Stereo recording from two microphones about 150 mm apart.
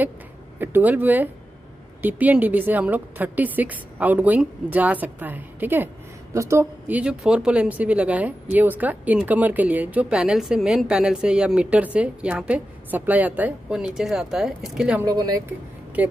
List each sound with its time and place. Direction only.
0.6 s a woman's voice: 15° right (ahead or behind)
15.0 s speech: 25° right (ahead or behind)
15.4 s speech: 10° right (ahead or behind)